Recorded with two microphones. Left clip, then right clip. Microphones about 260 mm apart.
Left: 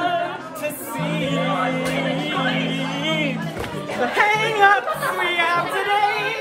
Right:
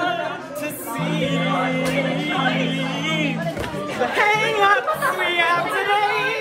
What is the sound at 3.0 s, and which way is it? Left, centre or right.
Music, left.